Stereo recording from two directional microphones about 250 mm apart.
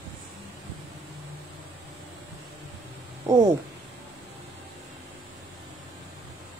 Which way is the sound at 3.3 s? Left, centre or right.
Centre.